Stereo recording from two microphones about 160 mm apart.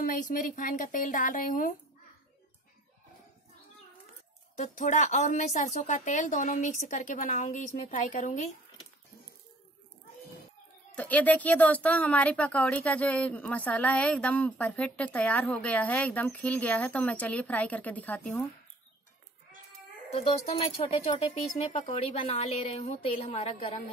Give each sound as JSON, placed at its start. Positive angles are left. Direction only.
{"t": 0.0, "sound": "speech", "side_deg": 55}
{"t": 4.6, "sound": "speech", "side_deg": 50}
{"t": 11.0, "sound": "speech", "side_deg": 10}
{"t": 20.2, "sound": "speech", "side_deg": 35}